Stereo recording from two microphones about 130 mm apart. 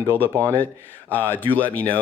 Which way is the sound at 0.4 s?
15° left (ahead or behind).